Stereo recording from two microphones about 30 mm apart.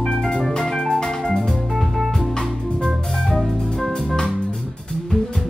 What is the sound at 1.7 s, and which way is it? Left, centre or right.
Music, centre.